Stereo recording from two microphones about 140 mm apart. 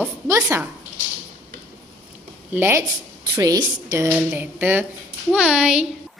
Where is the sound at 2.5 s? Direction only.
15° right (ahead or behind).